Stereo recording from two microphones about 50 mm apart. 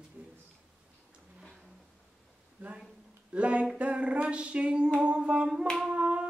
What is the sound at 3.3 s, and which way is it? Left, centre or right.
Humming, right.